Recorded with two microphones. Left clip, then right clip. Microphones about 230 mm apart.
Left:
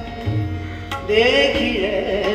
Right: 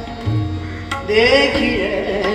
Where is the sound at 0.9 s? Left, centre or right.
Right.